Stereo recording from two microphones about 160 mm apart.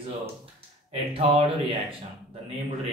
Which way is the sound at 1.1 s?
35° right (ahead or behind).